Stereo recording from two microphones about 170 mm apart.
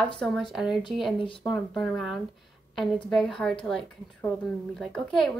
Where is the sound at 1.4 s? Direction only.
Centre (ahead or behind).